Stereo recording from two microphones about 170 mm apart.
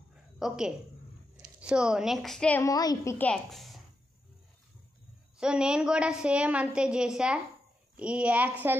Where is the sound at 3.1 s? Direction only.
5° left (ahead or behind).